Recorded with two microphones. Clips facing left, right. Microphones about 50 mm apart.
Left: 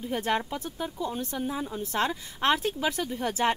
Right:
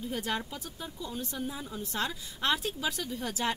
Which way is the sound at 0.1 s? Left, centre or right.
Left.